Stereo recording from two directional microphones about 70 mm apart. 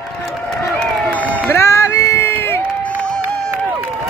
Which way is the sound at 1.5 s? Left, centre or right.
Left.